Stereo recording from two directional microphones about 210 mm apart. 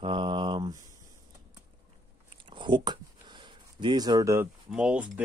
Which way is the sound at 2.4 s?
20° right (ahead or behind).